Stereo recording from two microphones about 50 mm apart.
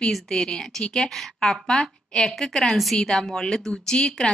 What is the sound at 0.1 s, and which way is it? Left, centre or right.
A woman's voice, centre.